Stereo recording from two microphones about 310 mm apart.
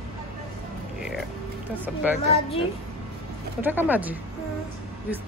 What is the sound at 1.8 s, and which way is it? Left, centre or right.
Speech, centre.